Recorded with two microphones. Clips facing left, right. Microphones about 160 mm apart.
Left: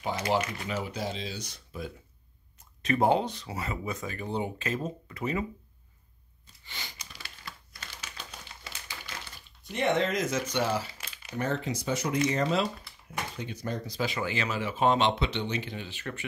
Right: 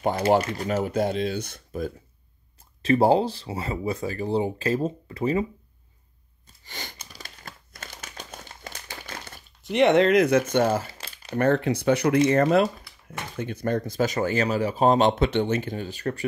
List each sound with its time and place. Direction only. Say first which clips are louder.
0.4 s speech: right 7 dB; 40° right (ahead or behind)
2.8 s speech: right 6 dB; 30° right (ahead or behind)
6.6 s a sound: right 5 dB; 45° right (ahead or behind)
7.0 s crumpling: right 4 dB; 40° right (ahead or behind)
9.6 s speech: right 9 dB; 80° right; by 10.9 s 50° right (ahead or behind)
11.0 s a sound: right 6 dB; 30° right (ahead or behind)
11.3 s speech: right 9 dB; 60° right (ahead or behind); by 16.3 s 40° right (ahead or behind)